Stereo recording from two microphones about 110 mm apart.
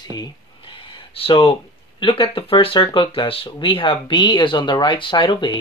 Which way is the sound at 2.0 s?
50° left (ahead or behind).